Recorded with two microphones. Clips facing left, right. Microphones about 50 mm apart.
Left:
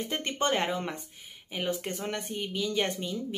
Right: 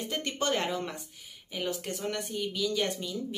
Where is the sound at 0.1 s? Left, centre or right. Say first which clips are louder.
Left 1 dB; left.